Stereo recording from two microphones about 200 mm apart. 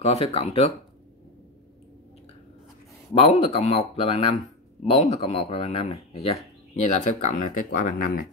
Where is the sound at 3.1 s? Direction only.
30° left (ahead or behind).